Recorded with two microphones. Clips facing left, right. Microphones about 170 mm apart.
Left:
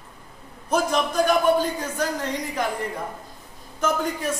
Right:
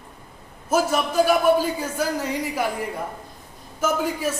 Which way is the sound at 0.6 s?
5° right (ahead or behind).